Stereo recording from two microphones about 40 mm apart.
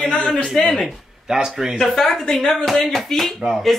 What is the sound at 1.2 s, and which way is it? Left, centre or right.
Speech, centre.